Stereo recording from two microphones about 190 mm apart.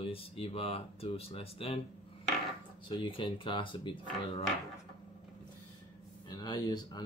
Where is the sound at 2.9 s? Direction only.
25° left (ahead or behind).